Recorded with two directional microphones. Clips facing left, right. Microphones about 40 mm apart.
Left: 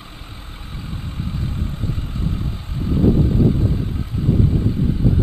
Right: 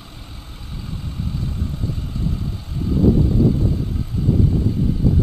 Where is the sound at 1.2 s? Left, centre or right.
Left.